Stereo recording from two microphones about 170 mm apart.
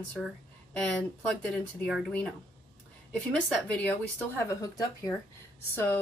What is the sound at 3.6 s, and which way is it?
Speech, 10° left (ahead or behind).